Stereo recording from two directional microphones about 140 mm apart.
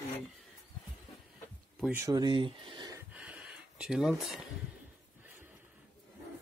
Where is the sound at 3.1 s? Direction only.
10° right (ahead or behind).